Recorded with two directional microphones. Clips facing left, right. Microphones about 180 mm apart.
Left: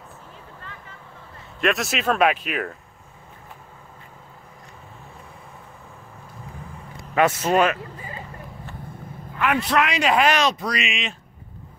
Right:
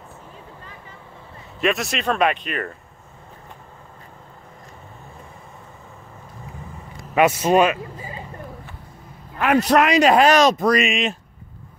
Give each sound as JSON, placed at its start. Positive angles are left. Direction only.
{"t": 1.6, "sound": "speech", "side_deg": 0}
{"t": 7.2, "sound": "speech", "side_deg": -15}
{"t": 9.4, "sound": "a man's voice", "side_deg": -40}